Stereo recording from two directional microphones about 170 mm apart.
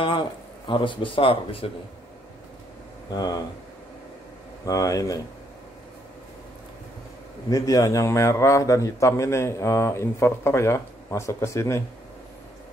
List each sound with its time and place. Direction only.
0.7 s speech: 30° left (ahead or behind)
3.1 s speech: 25° left (ahead or behind)
4.6 s speech: 20° left (ahead or behind)
7.4 s a man's voice: 20° left (ahead or behind)